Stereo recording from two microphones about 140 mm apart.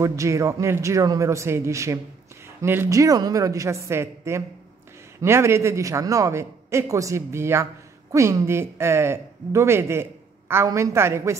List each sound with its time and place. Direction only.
0.0 s a man's voice: 20° right (ahead or behind)